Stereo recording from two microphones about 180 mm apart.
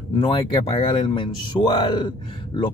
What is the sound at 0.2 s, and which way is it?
Speech, 30° left (ahead or behind).